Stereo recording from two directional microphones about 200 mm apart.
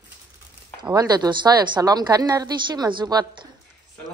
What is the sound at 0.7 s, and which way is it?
A woman's voice, 20° right (ahead or behind).